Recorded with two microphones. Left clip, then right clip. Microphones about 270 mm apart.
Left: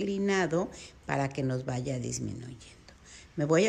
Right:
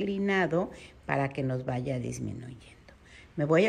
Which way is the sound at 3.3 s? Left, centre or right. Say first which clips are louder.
Right 1 dB; centre.